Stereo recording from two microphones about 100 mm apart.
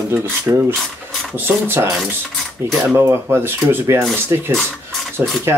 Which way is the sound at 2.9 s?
25° right (ahead or behind).